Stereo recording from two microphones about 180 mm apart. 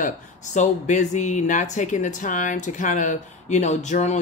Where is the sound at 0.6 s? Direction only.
40° left (ahead or behind).